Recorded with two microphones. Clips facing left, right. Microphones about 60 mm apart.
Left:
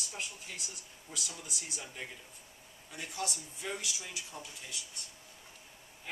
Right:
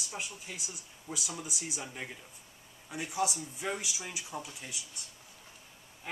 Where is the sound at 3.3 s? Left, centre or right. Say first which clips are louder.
Right 4 dB; right.